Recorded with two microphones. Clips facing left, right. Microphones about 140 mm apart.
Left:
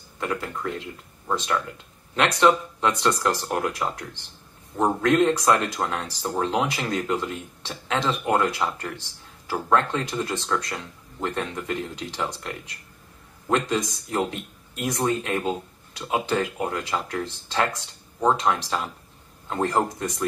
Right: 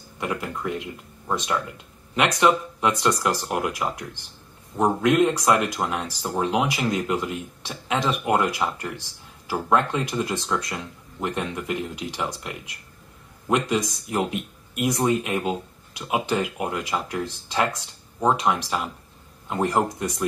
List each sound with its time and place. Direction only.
0.2 s speech: 15° right (ahead or behind)